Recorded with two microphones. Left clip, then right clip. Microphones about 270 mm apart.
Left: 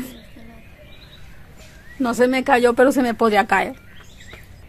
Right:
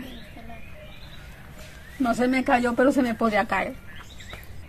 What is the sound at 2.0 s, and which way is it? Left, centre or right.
Speech, left.